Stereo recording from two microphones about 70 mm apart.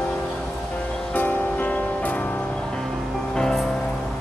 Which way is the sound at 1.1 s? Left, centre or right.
Left.